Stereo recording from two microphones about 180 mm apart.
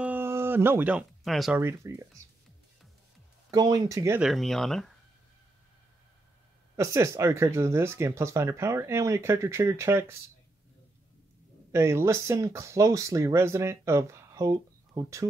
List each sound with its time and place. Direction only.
0.0 s music: 10° right (ahead or behind)
1.6 s speech: 15° right (ahead or behind)
3.5 s speech: 20° right (ahead or behind)
4.2 s speech: centre (ahead or behind)
6.8 s speech: 15° right (ahead or behind)
11.7 s speech: 15° right (ahead or behind)